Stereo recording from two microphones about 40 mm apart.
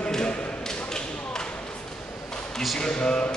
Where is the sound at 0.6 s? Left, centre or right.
Centre.